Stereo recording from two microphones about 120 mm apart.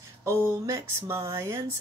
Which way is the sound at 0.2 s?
25° right (ahead or behind).